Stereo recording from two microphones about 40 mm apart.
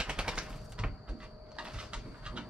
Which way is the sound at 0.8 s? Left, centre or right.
Right.